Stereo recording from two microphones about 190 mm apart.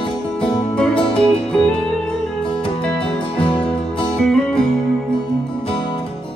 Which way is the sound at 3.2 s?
30° left (ahead or behind).